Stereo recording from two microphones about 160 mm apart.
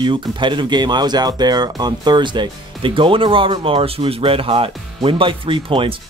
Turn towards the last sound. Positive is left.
turn(degrees=-35)  # may be behind; listen again after turning